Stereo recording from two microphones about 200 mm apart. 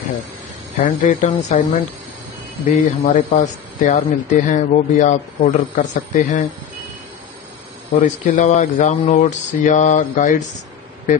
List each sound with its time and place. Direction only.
0.7 s speech: 40° left (ahead or behind)
8.0 s speech: 40° left (ahead or behind)